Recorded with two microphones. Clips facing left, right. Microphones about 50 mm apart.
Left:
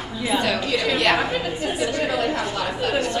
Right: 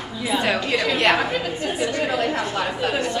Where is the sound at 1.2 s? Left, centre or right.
Centre.